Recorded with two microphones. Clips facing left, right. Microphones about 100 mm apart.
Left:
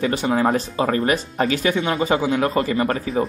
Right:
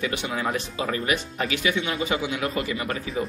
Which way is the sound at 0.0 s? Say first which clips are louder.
Left 8 dB; 40° left (ahead or behind).